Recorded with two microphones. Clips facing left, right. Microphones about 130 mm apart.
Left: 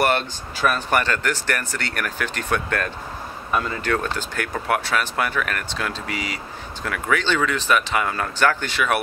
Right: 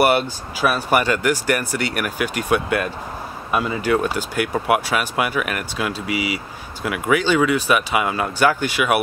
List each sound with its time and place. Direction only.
0.0 s speech: 10° right (ahead or behind)